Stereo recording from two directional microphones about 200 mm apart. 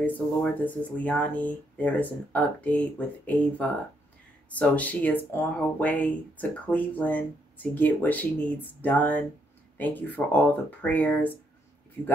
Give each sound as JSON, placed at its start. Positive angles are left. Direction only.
{"t": 0.0, "sound": "speech", "side_deg": 10}